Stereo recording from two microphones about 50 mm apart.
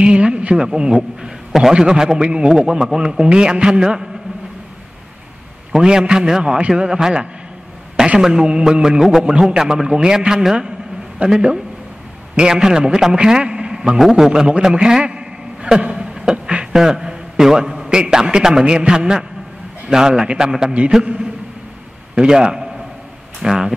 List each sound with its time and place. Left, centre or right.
0.0 s a man's voice: right
5.7 s a man's voice: centre
14.6 s a sound: centre
17.8 s a man's voice: centre